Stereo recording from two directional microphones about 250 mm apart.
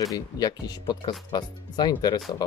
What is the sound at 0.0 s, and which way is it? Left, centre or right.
Speech, centre.